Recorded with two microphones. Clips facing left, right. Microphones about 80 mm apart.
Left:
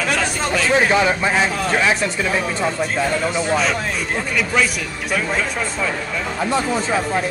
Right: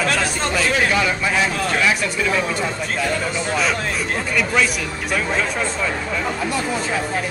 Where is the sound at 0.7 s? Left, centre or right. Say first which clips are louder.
Left 3 dB; left.